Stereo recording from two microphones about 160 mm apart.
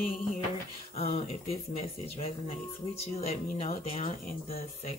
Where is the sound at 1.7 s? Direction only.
40° left (ahead or behind).